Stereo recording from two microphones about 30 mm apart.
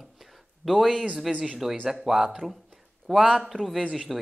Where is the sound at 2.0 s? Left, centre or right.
Centre.